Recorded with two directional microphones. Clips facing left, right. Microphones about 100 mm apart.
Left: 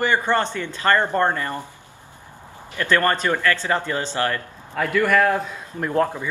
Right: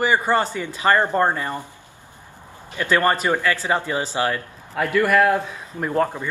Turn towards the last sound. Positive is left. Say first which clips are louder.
# even
turn(degrees=0)  # may be behind; listen again after turning